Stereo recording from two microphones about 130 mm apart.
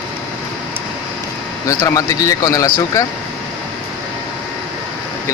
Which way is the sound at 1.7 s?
20° left (ahead or behind).